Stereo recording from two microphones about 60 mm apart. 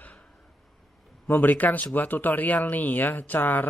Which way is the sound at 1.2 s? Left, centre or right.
Left.